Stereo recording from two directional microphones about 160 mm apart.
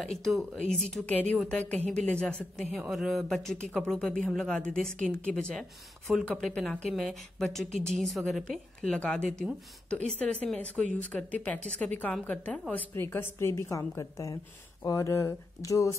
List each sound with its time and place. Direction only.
0.0 s a woman's voice: centre (ahead or behind); by 16.0 s 20° left (ahead or behind)